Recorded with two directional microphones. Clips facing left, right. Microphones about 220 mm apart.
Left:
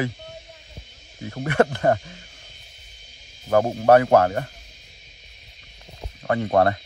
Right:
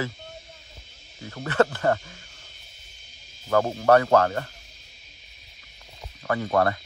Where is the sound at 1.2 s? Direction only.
20° left (ahead or behind).